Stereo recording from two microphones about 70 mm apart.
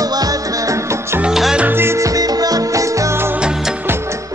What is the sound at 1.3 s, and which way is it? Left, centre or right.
Music, centre.